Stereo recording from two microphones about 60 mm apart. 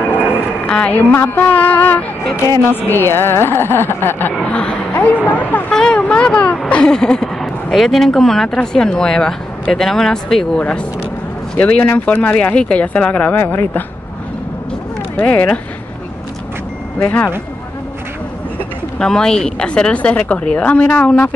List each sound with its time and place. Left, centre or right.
0.0 s a sound: left
0.7 s a woman's voice: centre
0.9 s speech: left
2.9 s a woman's voice: left
4.4 s speech: centre
4.9 s speech: left
5.7 s a sound: centre
6.7 s speech: centre
11.5 s speech: left
15.1 s speech: left
18.9 s speech: centre